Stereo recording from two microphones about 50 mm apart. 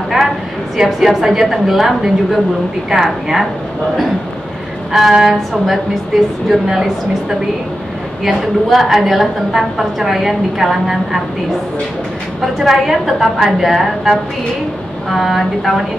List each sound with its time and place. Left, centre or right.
0.7 s a woman's voice: centre
4.9 s a woman's voice: centre
12.4 s a woman's voice: centre